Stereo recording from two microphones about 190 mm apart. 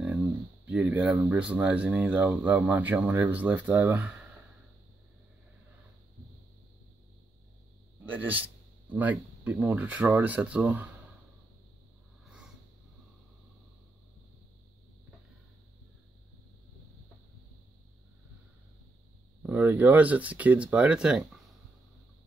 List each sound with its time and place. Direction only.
0.0 s speech: 5° right (ahead or behind)
8.0 s speech: 10° right (ahead or behind)
19.4 s speech: 10° right (ahead or behind)